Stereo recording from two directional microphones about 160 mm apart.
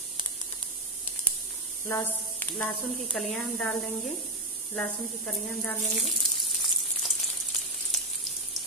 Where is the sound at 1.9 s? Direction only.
10° left (ahead or behind).